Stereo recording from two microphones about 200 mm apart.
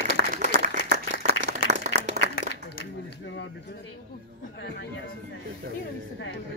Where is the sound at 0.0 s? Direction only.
45° right (ahead or behind).